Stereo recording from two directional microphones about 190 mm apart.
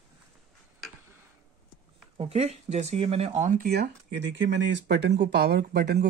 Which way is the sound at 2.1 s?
30° right (ahead or behind).